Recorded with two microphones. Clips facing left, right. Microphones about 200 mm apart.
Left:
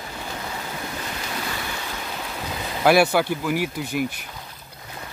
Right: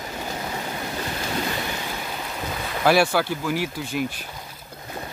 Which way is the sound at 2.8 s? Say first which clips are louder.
Left 2 dB; 10° left (ahead or behind).